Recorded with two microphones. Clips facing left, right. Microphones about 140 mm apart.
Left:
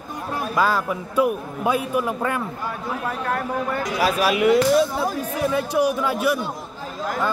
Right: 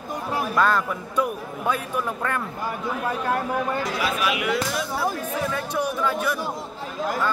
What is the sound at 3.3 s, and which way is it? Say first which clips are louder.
Speech: even; 20° right (ahead or behind).